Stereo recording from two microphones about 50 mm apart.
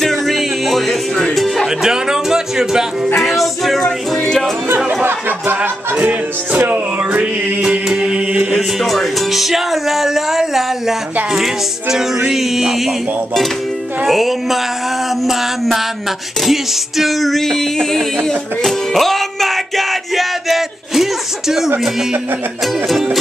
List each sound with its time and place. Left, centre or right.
0.0 s music: centre
1.8 s a sound: centre
3.2 s music: centre
5.0 s music: right
5.9 s music: right
7.6 s chant: centre
8.5 s music: centre
12.3 s a sound: centre
14.0 s music: centre
17.0 s music: centre